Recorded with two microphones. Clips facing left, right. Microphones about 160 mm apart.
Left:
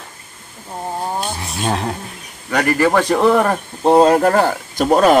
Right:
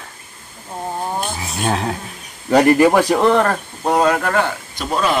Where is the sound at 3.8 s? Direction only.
30° left (ahead or behind); by 5.2 s 45° left (ahead or behind).